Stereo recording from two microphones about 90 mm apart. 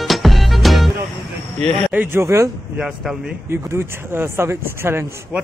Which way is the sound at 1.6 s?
10° left (ahead or behind).